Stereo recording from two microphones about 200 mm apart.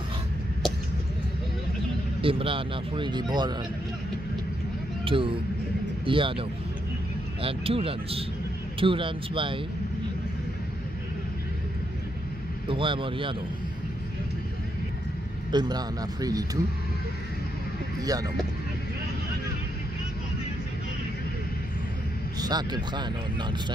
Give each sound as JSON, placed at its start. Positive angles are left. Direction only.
{"t": 2.2, "sound": "speech", "side_deg": -25}
{"t": 5.0, "sound": "speech", "side_deg": -25}
{"t": 7.4, "sound": "speech", "side_deg": -30}
{"t": 12.6, "sound": "speech", "side_deg": -25}
{"t": 15.5, "sound": "speech", "side_deg": -20}
{"t": 18.0, "sound": "speech", "side_deg": -20}
{"t": 22.4, "sound": "speech", "side_deg": -20}